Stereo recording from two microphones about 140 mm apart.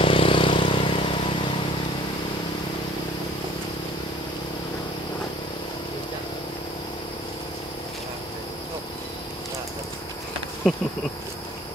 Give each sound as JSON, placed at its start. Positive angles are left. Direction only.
{"t": 0.0, "sound": "vehicle", "side_deg": 40}
{"t": 10.6, "sound": "insect", "side_deg": 0}